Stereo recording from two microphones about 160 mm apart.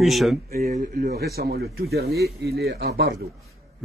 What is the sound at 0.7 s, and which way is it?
Speech, 70° right (ahead or behind).